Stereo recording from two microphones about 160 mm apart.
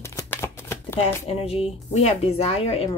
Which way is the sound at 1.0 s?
40° left (ahead or behind).